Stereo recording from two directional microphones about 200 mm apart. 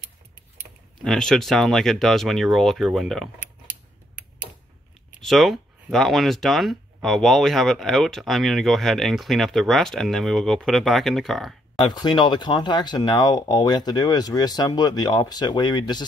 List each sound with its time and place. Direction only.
1.0 s speech: centre (ahead or behind)
4.1 s tick-tock: 10° right (ahead or behind)
5.2 s speech: centre (ahead or behind)
11.8 s speech: 20° left (ahead or behind)